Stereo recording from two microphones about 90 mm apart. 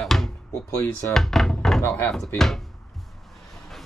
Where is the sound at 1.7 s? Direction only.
25° left (ahead or behind).